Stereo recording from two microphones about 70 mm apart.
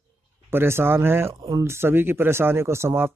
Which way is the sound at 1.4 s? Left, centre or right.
Right.